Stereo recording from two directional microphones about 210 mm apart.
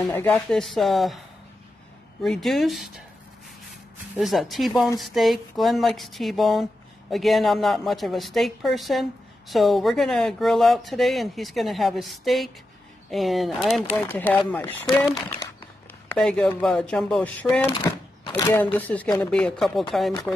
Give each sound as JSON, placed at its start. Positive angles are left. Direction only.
{"t": 0.0, "sound": "speech", "side_deg": 10}
{"t": 2.2, "sound": "speech", "side_deg": 0}
{"t": 4.2, "sound": "speech", "side_deg": 0}
{"t": 16.1, "sound": "speech", "side_deg": 5}
{"t": 17.7, "sound": "a sound", "side_deg": 20}
{"t": 18.6, "sound": "speech", "side_deg": 10}